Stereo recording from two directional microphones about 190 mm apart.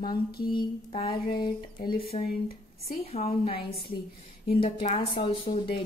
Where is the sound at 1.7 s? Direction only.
50° left (ahead or behind).